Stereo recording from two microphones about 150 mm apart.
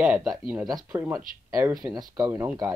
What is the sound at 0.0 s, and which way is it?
Speech, 5° right (ahead or behind).